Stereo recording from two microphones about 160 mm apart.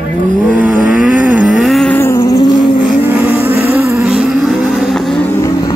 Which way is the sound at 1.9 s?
15° left (ahead or behind).